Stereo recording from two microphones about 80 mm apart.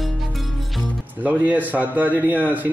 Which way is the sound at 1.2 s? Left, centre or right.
Right.